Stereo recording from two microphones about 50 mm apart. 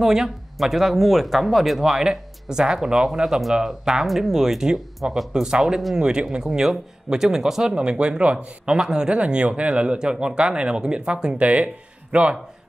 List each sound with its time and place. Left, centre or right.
0.0 s speech: centre
3.1 s speech: centre; by 12.4 s right